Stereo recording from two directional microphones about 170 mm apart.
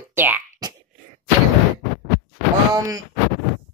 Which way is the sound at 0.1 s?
10° right (ahead or behind).